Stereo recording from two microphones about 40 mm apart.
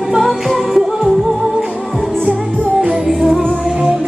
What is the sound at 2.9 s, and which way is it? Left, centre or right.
Music, centre.